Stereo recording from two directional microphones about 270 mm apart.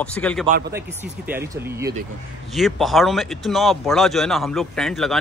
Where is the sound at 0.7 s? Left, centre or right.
Centre.